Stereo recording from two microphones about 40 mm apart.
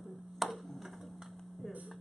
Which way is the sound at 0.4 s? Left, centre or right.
Centre.